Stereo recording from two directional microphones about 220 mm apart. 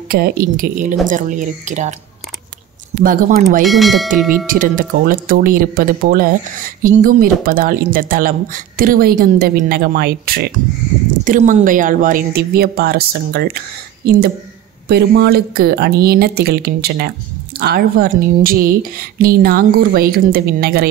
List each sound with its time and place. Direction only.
0.1 s speech: 45° right (ahead or behind)
3.0 s speech: 40° right (ahead or behind)
3.6 s speech: centre (ahead or behind)
4.5 s a woman's voice: 40° right (ahead or behind)